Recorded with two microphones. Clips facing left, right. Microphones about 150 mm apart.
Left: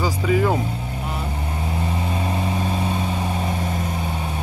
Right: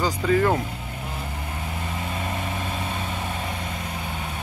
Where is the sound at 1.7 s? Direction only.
30° left (ahead or behind).